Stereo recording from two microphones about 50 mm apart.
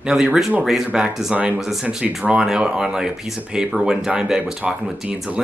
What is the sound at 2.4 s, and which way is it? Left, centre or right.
Speech, centre.